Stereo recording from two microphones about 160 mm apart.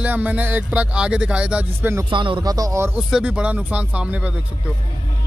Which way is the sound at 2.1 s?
30° right (ahead or behind).